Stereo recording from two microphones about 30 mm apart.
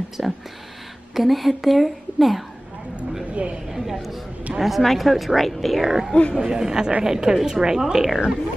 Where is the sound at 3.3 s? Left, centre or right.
Right.